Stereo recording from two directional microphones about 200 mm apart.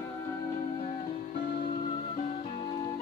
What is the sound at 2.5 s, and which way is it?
Music, 20° left (ahead or behind).